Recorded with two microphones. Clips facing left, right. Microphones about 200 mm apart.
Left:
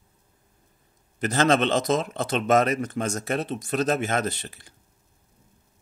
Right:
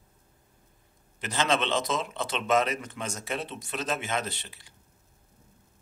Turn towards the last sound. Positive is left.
turn(degrees=45)  # may be behind; listen again after turning